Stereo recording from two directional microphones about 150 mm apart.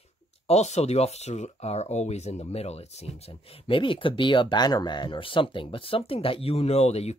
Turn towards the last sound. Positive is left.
turn(degrees=45)  # may be behind; listen again after turning